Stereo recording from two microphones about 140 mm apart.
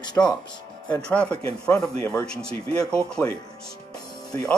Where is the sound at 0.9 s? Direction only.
10° left (ahead or behind).